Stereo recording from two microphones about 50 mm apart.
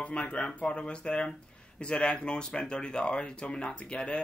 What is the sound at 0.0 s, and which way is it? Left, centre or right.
Speech, left.